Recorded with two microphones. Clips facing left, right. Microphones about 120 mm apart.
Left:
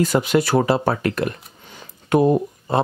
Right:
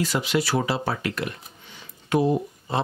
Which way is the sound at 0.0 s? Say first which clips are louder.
Left 6 dB; 50° left (ahead or behind).